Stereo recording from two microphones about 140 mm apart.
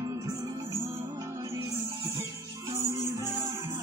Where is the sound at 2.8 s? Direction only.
20° right (ahead or behind).